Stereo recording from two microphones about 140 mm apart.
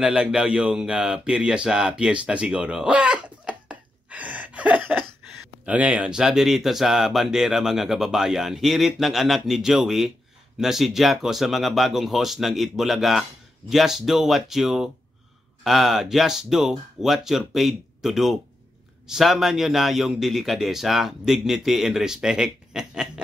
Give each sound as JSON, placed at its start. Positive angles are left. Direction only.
{"t": 0.0, "sound": "speech", "side_deg": -5}